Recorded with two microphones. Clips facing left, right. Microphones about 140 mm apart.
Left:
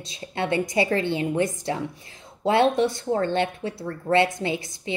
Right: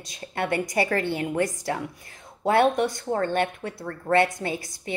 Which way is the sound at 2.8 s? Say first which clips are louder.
Left 2 dB; 25° left (ahead or behind).